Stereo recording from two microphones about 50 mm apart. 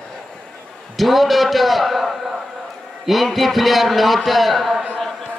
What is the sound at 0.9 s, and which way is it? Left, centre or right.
A man's voice, centre.